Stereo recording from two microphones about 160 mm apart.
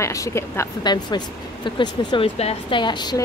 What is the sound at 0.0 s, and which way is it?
Speech, 20° left (ahead or behind).